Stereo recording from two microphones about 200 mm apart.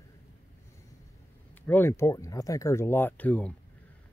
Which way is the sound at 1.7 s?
10° left (ahead or behind).